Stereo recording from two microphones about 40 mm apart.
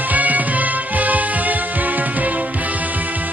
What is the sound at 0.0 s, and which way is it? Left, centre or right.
Music, right.